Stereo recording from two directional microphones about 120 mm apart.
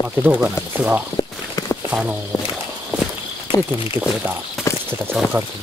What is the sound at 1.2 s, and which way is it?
Walk, 35° left (ahead or behind).